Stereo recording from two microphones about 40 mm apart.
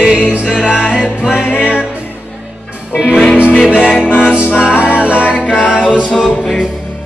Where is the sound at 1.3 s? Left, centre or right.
Left.